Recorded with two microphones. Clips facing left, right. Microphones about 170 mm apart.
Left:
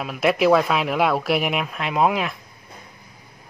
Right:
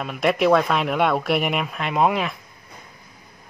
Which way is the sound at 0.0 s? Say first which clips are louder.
Left 1 dB; centre (ahead or behind).